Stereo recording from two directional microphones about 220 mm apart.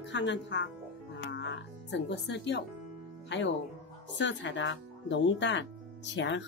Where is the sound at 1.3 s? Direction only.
55° left (ahead or behind).